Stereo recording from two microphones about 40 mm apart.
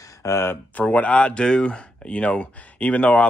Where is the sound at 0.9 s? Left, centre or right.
Left.